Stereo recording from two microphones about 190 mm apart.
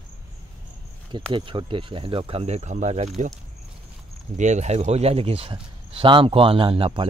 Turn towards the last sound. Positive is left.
turn(degrees=-25)  # may be behind; listen again after turning